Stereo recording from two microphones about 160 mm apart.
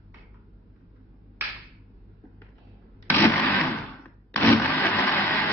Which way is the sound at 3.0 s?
10° left (ahead or behind).